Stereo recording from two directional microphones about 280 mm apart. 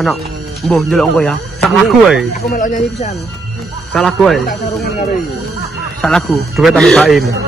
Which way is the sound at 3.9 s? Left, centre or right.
Centre.